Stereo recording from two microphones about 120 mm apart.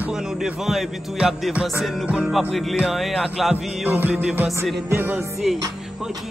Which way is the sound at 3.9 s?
15° right (ahead or behind).